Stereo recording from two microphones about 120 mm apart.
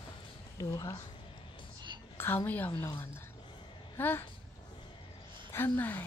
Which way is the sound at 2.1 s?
15° left (ahead or behind).